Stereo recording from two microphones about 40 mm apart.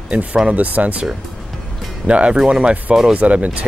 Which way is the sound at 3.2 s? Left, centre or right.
Right.